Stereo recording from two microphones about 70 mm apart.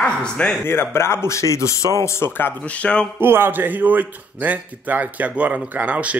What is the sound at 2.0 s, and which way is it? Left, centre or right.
Speech, left.